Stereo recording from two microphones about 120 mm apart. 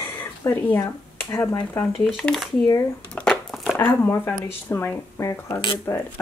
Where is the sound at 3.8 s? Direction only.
15° left (ahead or behind).